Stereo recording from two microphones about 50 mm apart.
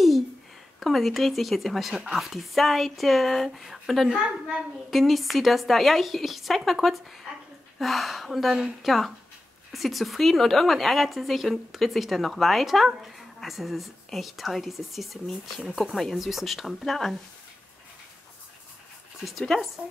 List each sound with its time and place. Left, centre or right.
0.7 s a woman's voice: centre
19.5 s a woman's voice: centre